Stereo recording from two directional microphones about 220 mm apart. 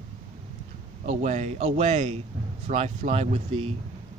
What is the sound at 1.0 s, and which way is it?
Speech, 30° right (ahead or behind).